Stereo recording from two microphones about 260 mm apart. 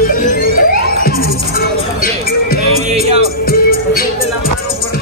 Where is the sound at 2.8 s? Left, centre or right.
Right.